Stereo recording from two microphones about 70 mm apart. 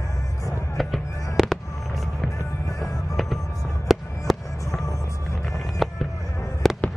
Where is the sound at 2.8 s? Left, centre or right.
Centre.